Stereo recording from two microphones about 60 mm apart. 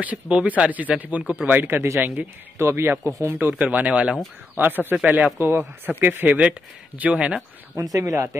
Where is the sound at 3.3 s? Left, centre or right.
Right.